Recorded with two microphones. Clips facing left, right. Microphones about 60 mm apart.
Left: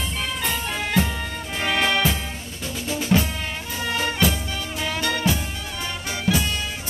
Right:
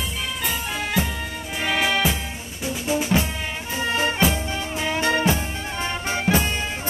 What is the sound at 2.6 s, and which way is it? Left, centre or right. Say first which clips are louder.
Music: right 3 dB; centre.